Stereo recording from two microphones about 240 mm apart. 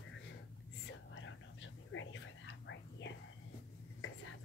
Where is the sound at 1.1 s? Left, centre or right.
Left.